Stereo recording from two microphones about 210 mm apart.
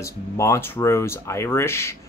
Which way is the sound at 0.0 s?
15° left (ahead or behind).